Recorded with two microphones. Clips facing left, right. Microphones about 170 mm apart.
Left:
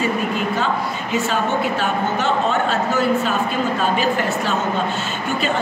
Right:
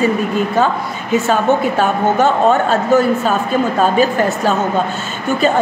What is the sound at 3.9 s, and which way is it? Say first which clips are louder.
Speech: right 5 dB; 45° right (ahead or behind).